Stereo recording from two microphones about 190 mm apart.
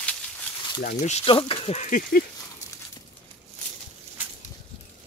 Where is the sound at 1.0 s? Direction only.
30° left (ahead or behind).